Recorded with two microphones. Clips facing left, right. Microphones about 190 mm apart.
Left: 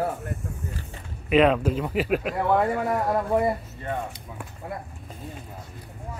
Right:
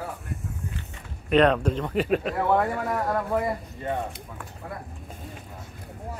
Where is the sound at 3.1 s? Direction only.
25° left (ahead or behind).